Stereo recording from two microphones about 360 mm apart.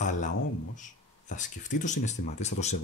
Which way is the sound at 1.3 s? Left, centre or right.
Left.